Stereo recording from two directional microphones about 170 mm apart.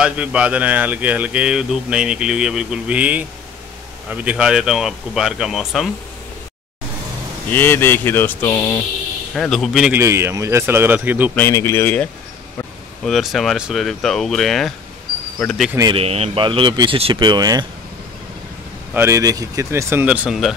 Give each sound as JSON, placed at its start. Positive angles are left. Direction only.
{"t": 0.0, "sound": "speech", "side_deg": -5}
{"t": 7.4, "sound": "speech", "side_deg": 10}
{"t": 9.3, "sound": "speech", "side_deg": 0}
{"t": 9.9, "sound": "speech", "side_deg": -15}
{"t": 11.3, "sound": "speech", "side_deg": 15}
{"t": 13.0, "sound": "speech", "side_deg": 0}
{"t": 15.9, "sound": "speech", "side_deg": -35}
{"t": 18.9, "sound": "speech", "side_deg": -15}